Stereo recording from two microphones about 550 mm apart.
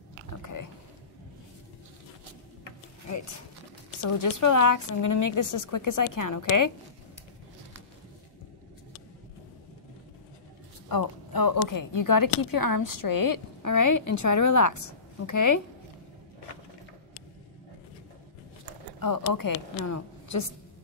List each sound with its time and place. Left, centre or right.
0.3 s a sound: left
4.0 s speech: left
10.9 s speech: left
18.9 s speech: left